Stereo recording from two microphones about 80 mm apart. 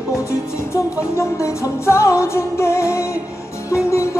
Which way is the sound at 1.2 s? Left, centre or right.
Left.